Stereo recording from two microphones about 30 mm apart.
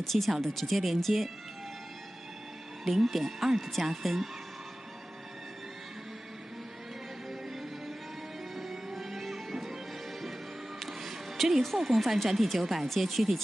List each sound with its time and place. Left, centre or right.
0.0 s speech: centre
2.8 s speech: centre
8.5 s music: centre
10.8 s music: centre
11.6 s speech: centre